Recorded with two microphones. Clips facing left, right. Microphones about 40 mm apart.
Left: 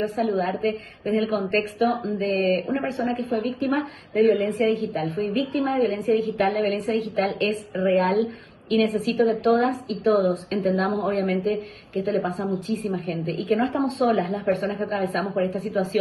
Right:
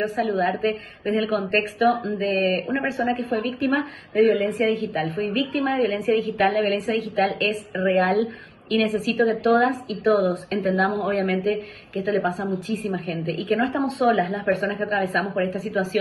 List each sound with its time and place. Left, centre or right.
0.0 s a woman's voice: right